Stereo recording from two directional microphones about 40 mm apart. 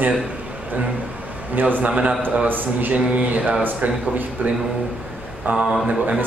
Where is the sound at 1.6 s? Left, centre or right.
Right.